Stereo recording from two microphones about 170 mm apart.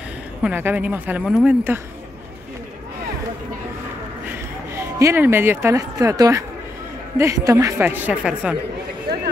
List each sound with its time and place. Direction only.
0.4 s a woman's voice: 10° right (ahead or behind)
4.3 s a woman's voice: 15° right (ahead or behind)